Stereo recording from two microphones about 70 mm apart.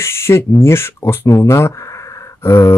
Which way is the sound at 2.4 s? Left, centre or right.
Left.